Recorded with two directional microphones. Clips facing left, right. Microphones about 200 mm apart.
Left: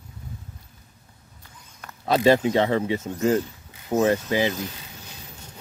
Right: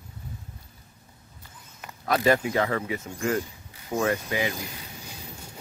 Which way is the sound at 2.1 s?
25° left (ahead or behind).